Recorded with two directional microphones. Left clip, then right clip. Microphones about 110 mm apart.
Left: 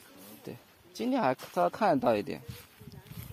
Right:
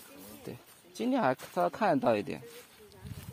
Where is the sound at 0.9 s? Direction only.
Centre (ahead or behind).